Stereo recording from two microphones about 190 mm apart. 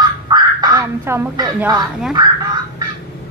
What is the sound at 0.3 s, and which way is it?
Quack, 20° right (ahead or behind).